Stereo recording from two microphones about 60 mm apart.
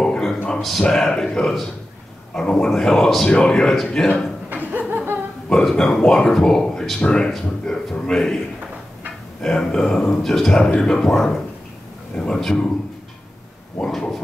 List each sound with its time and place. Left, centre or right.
0.0 s a sound: centre
0.6 s speech: centre
3.3 s speech: centre
3.5 s speech: centre
4.5 s a sound: right
5.5 s speech: centre
9.4 s speech: centre
13.8 s speech: centre